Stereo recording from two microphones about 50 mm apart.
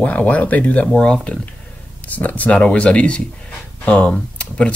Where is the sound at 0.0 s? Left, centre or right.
Left.